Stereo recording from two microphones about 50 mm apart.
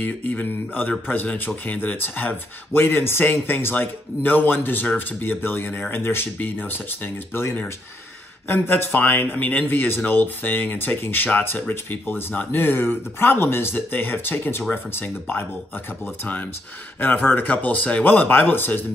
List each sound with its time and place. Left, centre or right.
0.0 s speech: left
8.5 s speech: left
17.0 s speech: left